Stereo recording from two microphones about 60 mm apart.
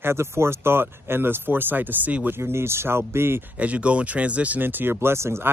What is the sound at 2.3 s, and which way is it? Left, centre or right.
Speech, right.